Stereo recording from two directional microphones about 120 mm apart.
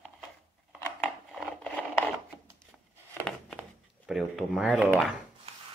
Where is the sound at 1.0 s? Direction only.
Centre (ahead or behind).